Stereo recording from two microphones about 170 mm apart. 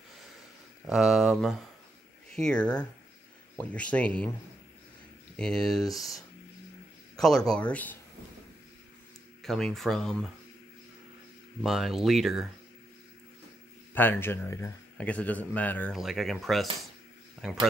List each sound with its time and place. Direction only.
0.8 s speech: 5° right (ahead or behind)
5.4 s speech: 5° left (ahead or behind)
7.2 s speech: 5° left (ahead or behind)
9.4 s speech: 5° left (ahead or behind)
11.6 s speech: centre (ahead or behind)
13.9 s speech: 10° left (ahead or behind)